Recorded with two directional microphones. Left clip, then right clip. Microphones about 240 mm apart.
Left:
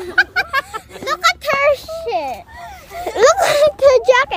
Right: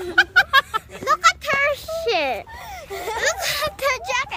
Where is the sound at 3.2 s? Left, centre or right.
Centre.